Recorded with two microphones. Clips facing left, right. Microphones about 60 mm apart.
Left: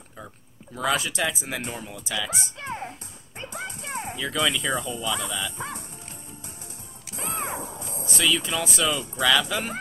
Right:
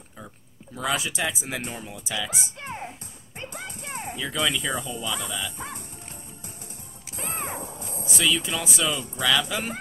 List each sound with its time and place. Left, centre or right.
0.7 s speech: centre
2.4 s speech: left
3.5 s music: left
4.2 s speech: centre
5.6 s music: left
7.5 s a sound: left
8.0 s speech: centre